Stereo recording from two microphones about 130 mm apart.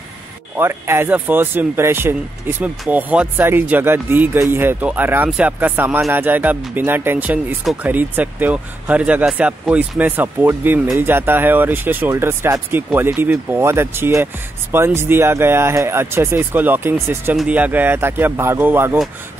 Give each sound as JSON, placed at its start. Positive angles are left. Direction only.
{"t": 0.6, "sound": "speech", "side_deg": -20}